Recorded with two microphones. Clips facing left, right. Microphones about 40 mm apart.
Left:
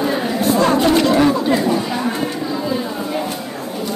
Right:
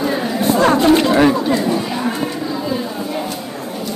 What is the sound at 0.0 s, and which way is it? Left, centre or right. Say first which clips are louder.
Chatter: even; centre.